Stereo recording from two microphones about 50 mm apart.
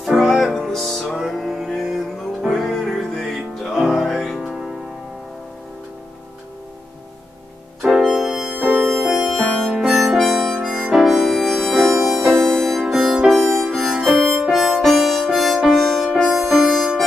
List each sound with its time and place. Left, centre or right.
0.0 s music: centre
2.6 s music: centre
7.8 s music: centre
8.5 s music: right
8.9 s music: centre
9.5 s harmonica: centre
11.3 s music: centre
12.4 s music: centre
12.8 s music: centre